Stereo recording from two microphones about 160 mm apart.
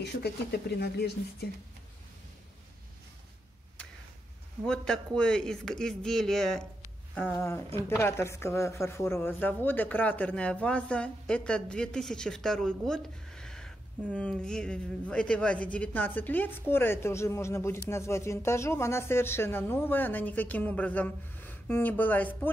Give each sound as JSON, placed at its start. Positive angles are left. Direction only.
{"t": 0.0, "sound": "speech", "side_deg": 90}
{"t": 4.6, "sound": "speech", "side_deg": 5}
{"t": 7.3, "sound": "speech", "side_deg": 15}